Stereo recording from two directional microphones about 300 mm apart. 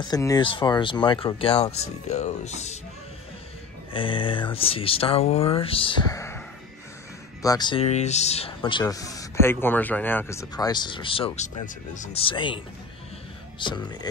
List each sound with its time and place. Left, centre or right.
0.0 s speech: centre
3.9 s speech: centre
7.4 s speech: centre